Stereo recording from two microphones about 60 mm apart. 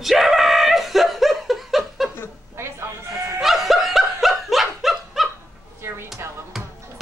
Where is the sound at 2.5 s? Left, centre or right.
Right.